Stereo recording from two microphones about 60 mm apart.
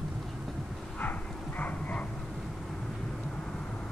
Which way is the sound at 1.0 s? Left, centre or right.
Left.